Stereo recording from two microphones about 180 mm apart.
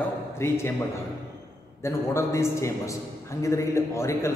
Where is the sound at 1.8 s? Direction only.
15° left (ahead or behind).